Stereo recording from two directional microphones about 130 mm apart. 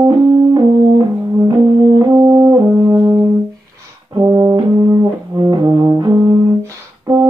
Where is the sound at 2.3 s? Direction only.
30° right (ahead or behind).